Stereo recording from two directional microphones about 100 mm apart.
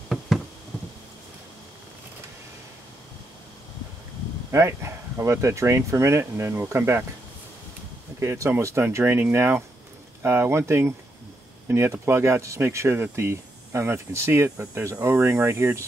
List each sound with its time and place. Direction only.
4.5 s speech: 25° right (ahead or behind)
8.2 s speech: 30° right (ahead or behind)